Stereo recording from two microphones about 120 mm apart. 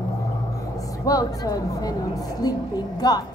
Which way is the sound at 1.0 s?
30° left (ahead or behind).